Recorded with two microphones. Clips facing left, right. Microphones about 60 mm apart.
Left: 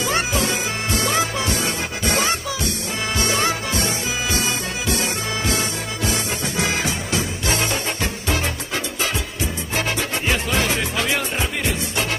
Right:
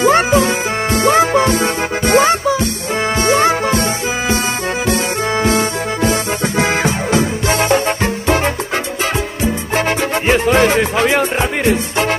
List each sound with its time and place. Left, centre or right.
0.0 s music: right
5.4 s music: right
9.8 s music: right